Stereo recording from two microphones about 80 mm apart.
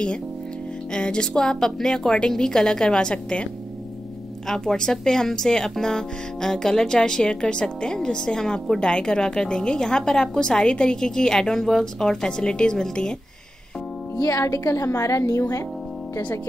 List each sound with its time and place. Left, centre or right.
0.9 s speech: centre
4.5 s speech: centre
14.1 s speech: left